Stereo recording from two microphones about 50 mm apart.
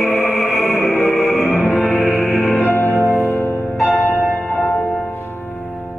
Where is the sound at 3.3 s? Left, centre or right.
Left.